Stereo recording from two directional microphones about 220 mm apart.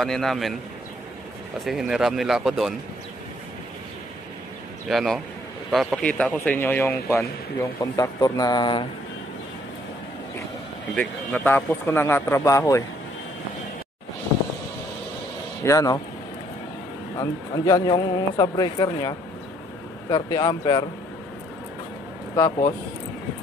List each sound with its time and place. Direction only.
0.0 s speech: centre (ahead or behind)
1.6 s speech: centre (ahead or behind)
4.8 s speech: centre (ahead or behind); by 8.8 s 20° left (ahead or behind)
11.0 s speech: 10° left (ahead or behind)
15.6 s speech: 15° left (ahead or behind)
17.2 s speech: 15° left (ahead or behind)